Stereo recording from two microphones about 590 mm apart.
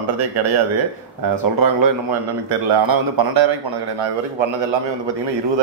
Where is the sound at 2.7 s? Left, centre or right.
Right.